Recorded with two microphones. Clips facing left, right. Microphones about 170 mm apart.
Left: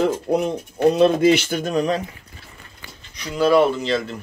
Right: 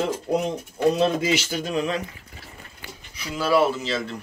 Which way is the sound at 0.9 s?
60° left (ahead or behind).